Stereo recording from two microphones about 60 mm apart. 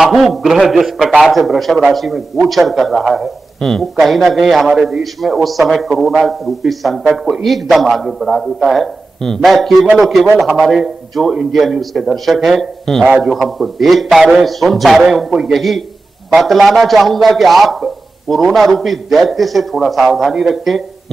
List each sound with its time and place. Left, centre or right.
0.0 s a man's voice: centre